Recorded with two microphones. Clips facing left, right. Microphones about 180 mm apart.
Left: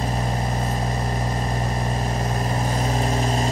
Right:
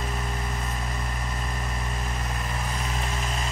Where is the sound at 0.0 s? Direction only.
35° left (ahead or behind).